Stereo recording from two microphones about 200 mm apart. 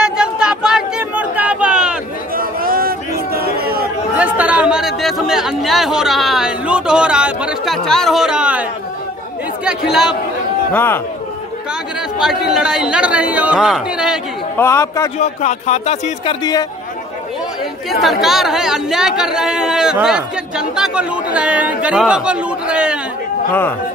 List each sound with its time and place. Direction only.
0.0 s chatter: 5° right (ahead or behind)
2.3 s a sound: 45° right (ahead or behind)
4.2 s a sound: 5° right (ahead or behind)
9.7 s speech: 5° right (ahead or behind)
10.7 s speech: 10° left (ahead or behind)
12.2 s speech: centre (ahead or behind)
14.6 s speech: 15° left (ahead or behind)
15.1 s speech: 35° left (ahead or behind)
18.0 s speech: centre (ahead or behind)